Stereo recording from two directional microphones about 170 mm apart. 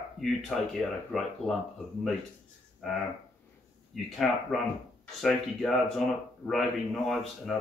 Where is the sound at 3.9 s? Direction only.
Centre (ahead or behind).